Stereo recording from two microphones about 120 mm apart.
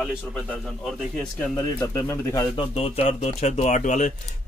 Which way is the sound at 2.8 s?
60° left (ahead or behind).